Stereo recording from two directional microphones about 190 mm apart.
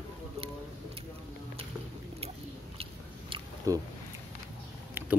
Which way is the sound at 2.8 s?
25° right (ahead or behind).